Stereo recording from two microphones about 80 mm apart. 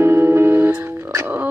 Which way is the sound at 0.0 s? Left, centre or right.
Right.